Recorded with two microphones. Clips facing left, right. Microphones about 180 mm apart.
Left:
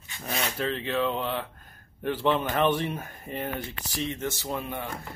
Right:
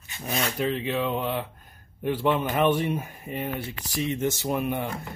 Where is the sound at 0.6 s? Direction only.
10° right (ahead or behind).